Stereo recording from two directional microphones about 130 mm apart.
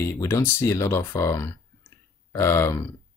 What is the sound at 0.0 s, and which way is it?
Speech, 20° left (ahead or behind).